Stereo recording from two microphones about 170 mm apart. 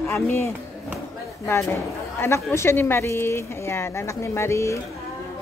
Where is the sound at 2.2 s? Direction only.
15° left (ahead or behind).